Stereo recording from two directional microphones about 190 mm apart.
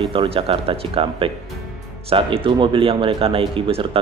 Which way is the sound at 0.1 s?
30° right (ahead or behind).